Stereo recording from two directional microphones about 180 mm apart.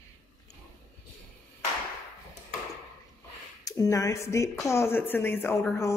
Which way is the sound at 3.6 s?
20° left (ahead or behind).